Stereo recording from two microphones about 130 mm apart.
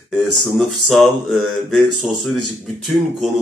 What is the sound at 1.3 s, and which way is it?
Speech, centre (ahead or behind).